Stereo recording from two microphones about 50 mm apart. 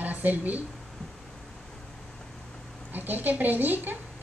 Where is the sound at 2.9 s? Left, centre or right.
Right.